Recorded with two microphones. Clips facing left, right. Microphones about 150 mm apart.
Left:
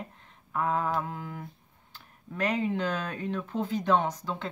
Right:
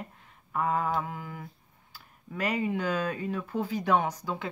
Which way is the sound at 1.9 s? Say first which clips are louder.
Left 1 dB; 10° right (ahead or behind).